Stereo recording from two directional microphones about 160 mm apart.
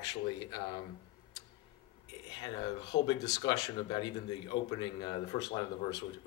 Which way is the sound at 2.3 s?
30° left (ahead or behind).